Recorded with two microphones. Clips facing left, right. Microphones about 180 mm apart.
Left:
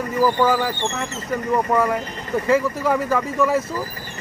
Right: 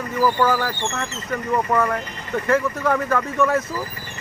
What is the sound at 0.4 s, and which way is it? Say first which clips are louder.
Speech: left 1 dB; 10° left (ahead or behind).